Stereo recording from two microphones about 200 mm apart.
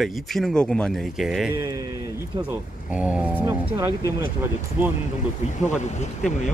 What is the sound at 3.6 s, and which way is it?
Speech, 20° right (ahead or behind).